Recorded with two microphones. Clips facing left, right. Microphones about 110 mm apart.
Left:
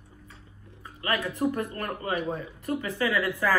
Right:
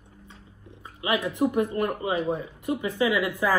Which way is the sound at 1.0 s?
15° right (ahead or behind).